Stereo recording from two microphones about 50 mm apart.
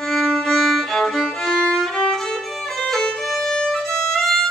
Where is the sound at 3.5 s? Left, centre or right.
Centre.